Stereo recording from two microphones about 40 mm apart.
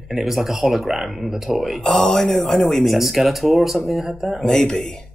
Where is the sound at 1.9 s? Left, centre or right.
Centre.